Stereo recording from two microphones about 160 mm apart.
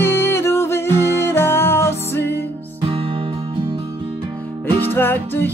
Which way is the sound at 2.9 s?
35° right (ahead or behind).